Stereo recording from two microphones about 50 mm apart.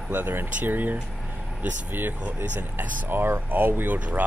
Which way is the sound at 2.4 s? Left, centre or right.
Right.